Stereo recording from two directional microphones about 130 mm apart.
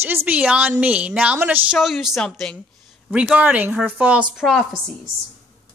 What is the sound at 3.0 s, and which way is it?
A man's voice, 5° right (ahead or behind).